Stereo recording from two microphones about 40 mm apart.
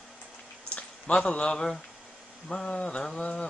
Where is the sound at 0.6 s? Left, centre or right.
Left.